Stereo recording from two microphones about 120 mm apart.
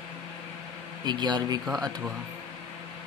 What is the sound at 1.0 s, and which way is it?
Speech, 40° right (ahead or behind).